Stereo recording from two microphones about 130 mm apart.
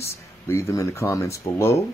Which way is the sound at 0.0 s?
20° left (ahead or behind).